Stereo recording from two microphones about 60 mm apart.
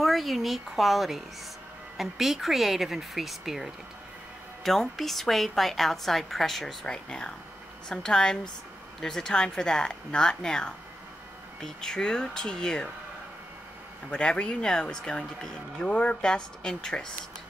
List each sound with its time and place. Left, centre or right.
0.0 s a woman's voice: centre
6.9 s speech: centre
14.1 s speech: centre